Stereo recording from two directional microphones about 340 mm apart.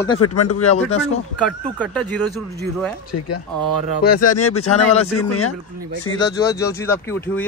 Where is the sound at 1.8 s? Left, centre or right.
Centre.